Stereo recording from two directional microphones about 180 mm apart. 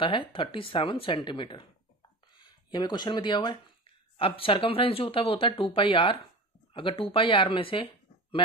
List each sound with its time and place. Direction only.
0.0 s speech: 30° left (ahead or behind)